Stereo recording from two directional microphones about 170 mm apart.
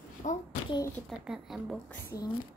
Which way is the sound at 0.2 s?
45° left (ahead or behind).